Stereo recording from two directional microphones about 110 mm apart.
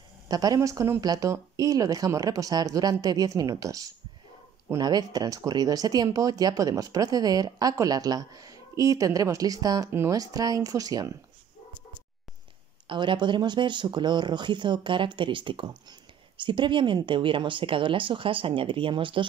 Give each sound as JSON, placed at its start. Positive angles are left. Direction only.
{"t": 0.3, "sound": "speech", "side_deg": -35}
{"t": 9.8, "sound": "speech", "side_deg": -20}
{"t": 10.1, "sound": "speech", "side_deg": -35}
{"t": 12.8, "sound": "speech", "side_deg": -50}